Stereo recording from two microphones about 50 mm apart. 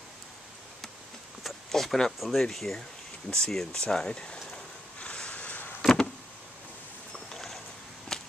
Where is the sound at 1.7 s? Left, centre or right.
Centre.